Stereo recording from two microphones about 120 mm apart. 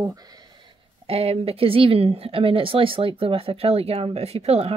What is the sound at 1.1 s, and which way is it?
Speech, 60° right (ahead or behind).